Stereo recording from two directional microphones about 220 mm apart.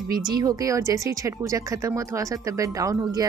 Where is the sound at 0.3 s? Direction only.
15° right (ahead or behind).